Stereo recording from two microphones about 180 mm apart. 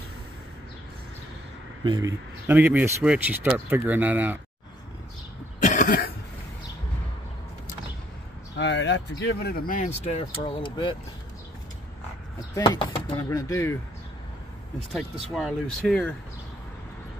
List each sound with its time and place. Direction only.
1.9 s speech: 20° right (ahead or behind)
2.4 s speech: 10° right (ahead or behind)
5.6 s cough: 45° left (ahead or behind)
8.5 s speech: 75° left (ahead or behind); by 10.9 s 25° left (ahead or behind)
12.5 s speech: 25° left (ahead or behind)
15.3 s speech: centre (ahead or behind)